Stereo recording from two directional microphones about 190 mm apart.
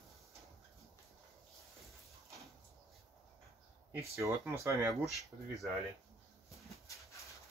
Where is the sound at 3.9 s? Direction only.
15° right (ahead or behind).